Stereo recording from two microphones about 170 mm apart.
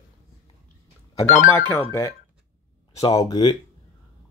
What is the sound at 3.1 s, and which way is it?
Speech, 20° left (ahead or behind).